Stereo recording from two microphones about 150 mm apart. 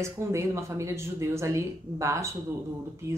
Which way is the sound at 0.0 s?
20° right (ahead or behind).